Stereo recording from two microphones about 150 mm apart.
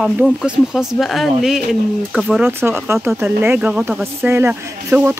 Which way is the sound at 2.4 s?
15° right (ahead or behind).